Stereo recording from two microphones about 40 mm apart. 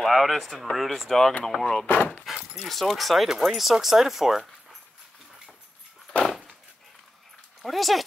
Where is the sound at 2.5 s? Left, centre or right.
Centre.